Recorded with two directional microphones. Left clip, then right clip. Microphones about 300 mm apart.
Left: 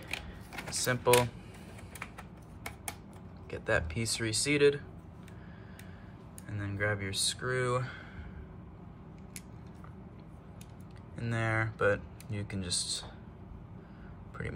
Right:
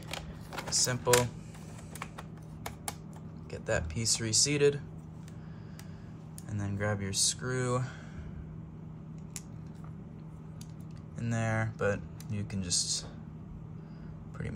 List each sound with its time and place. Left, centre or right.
0.1 s a sound: centre
3.5 s speech: centre
6.5 s speech: centre
11.1 s speech: centre